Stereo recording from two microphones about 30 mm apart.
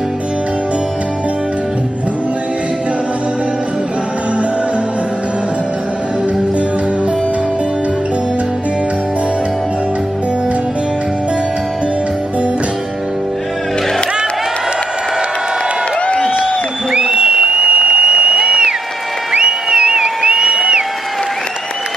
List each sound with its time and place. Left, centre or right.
16.9 s applause: right
17.6 s a sound: right
19.4 s music: right